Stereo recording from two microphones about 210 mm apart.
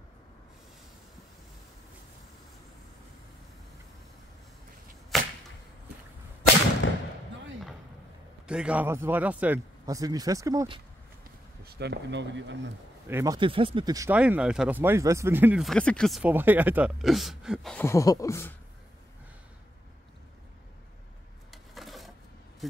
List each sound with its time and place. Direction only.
5.1 s a sound: centre (ahead or behind)
6.8 s a sound: 65° left (ahead or behind)
8.5 s speech: 5° right (ahead or behind)
11.6 s speech: 50° right (ahead or behind)
13.1 s speech: 15° right (ahead or behind)
17.7 s speech: 15° left (ahead or behind)
21.5 s filing: centre (ahead or behind)
22.6 s speech: centre (ahead or behind)